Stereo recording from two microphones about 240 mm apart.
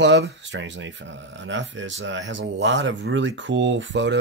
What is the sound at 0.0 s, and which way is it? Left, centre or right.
Speech, right.